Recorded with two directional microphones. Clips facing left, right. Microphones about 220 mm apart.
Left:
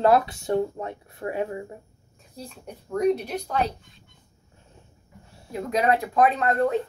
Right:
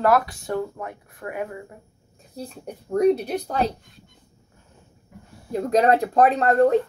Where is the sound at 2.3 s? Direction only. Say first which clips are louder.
Right 5 dB; 40° right (ahead or behind).